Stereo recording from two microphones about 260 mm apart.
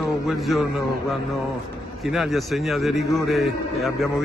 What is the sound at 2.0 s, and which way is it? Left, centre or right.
A man's voice, centre.